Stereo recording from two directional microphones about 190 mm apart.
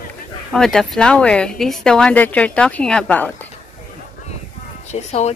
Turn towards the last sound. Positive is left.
turn(degrees=35)  # may be behind; listen again after turning